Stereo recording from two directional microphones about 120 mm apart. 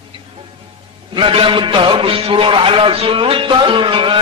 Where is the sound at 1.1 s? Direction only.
45° right (ahead or behind).